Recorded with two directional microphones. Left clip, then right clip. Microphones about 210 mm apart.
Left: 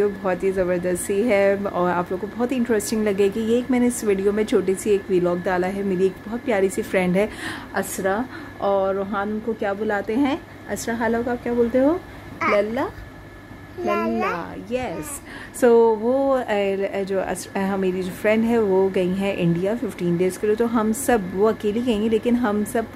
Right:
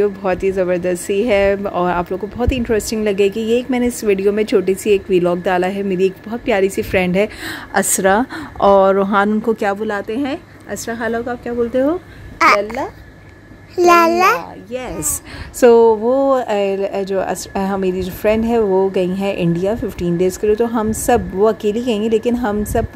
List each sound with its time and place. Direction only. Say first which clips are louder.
0.0 s speech: right 5 dB; 20° right (ahead or behind)
7.7 s a woman's voice: right 10 dB; 50° right (ahead or behind)
9.8 s a woman's voice: right 1 dB; 5° right (ahead or behind)
12.4 s a woman's voice: right 10 dB; 55° right (ahead or behind)
13.7 s a woman's voice: right 13 dB; 50° right (ahead or behind)
15.6 s speech: right 6 dB; 25° right (ahead or behind)